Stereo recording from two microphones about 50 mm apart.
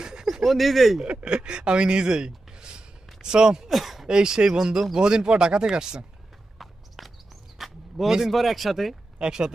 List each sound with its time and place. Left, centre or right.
0.0 s a sound: centre
0.4 s speech: centre
1.0 s speech: right
3.7 s a sound: centre
4.1 s speech: centre
6.6 s walk: centre
7.5 s a sound: centre
8.3 s speech: centre
9.2 s speech: centre